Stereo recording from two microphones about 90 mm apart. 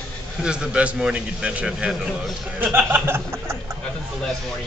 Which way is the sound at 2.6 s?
20° right (ahead or behind).